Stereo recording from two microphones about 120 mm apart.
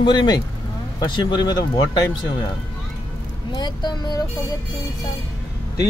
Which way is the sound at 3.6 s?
35° left (ahead or behind).